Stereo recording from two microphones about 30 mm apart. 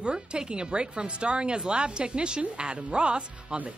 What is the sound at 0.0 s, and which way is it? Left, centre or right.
Speech, right.